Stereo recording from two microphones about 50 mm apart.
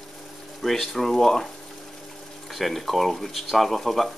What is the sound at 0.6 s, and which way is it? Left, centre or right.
Speech, centre.